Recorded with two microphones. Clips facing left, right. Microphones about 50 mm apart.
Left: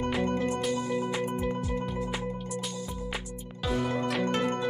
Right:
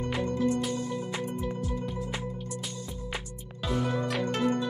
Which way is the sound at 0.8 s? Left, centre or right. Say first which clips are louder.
Left 4 dB; centre.